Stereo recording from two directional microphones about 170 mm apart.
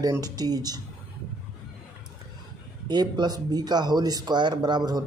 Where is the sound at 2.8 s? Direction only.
25° right (ahead or behind).